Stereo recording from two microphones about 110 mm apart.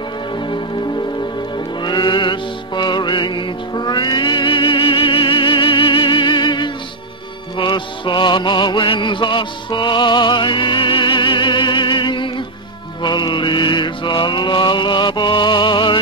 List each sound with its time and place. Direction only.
0.4 s music: 45° left (ahead or behind)
13.0 s mantra: 40° left (ahead or behind)